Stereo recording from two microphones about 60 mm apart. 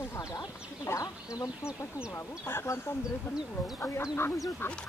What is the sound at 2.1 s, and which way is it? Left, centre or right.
Speech, left.